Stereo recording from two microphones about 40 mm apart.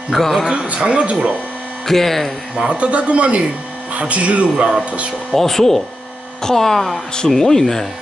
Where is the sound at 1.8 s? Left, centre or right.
Centre.